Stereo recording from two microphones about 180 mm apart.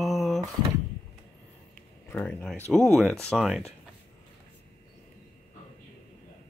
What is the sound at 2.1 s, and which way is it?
Speech, 15° left (ahead or behind).